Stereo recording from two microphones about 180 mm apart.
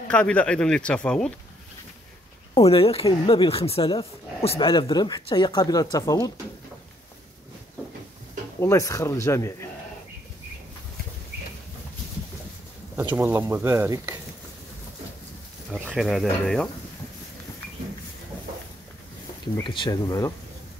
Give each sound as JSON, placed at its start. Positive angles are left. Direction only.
{"t": 0.1, "sound": "speech", "side_deg": 5}
{"t": 2.5, "sound": "speech", "side_deg": 35}
{"t": 8.5, "sound": "speech", "side_deg": 15}
{"t": 13.1, "sound": "speech", "side_deg": -15}
{"t": 15.9, "sound": "speech", "side_deg": 0}
{"t": 19.6, "sound": "speech", "side_deg": 25}